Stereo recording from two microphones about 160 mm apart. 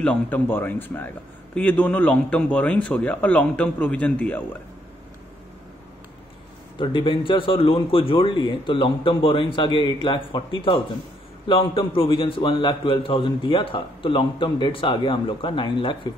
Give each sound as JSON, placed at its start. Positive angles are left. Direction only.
{"t": 0.0, "sound": "a man's voice", "side_deg": 10}
{"t": 6.8, "sound": "a man's voice", "side_deg": 30}